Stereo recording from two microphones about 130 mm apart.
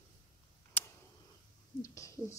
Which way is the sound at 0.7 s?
15° left (ahead or behind).